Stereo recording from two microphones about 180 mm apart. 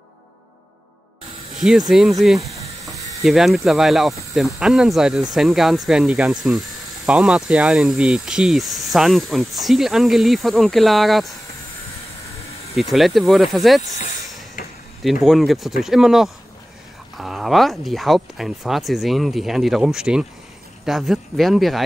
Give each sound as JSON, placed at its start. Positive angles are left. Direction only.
{"t": 1.6, "sound": "speech", "side_deg": -5}
{"t": 12.9, "sound": "speech", "side_deg": 0}
{"t": 13.9, "sound": "vehicle", "side_deg": 40}
{"t": 15.2, "sound": "speech", "side_deg": 0}